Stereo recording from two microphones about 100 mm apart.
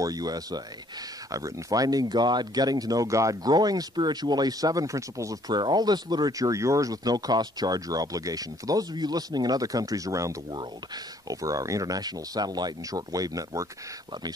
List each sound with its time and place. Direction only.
0.0 s speech: 40° right (ahead or behind)